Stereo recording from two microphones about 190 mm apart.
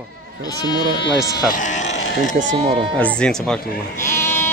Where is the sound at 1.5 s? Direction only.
40° left (ahead or behind).